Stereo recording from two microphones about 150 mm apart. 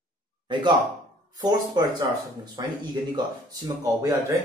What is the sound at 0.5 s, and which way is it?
Speech, 30° right (ahead or behind).